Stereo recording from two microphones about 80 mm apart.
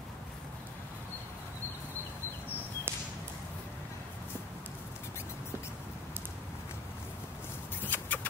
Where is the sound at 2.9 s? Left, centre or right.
Right.